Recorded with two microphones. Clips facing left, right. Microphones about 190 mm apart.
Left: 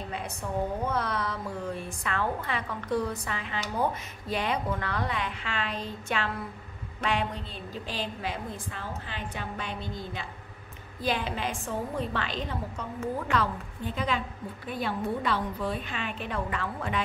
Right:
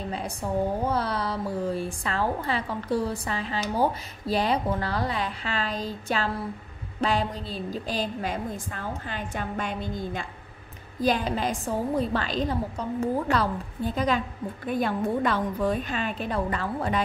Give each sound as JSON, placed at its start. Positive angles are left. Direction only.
{"t": 0.1, "sound": "a woman's voice", "side_deg": -35}